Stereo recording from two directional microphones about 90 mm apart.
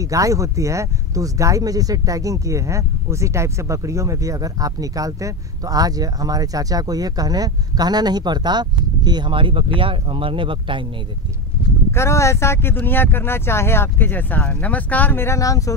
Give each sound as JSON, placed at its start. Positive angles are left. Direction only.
{"t": 0.0, "sound": "speech", "side_deg": -40}
{"t": 11.9, "sound": "speech", "side_deg": 30}